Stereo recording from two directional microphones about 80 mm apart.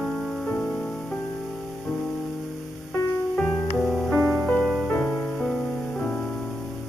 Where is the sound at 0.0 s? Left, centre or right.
Centre.